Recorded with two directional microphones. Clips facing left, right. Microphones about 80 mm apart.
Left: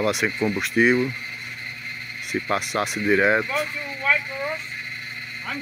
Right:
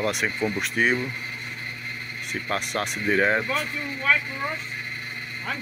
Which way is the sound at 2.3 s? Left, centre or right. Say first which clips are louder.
Left 4 dB; centre.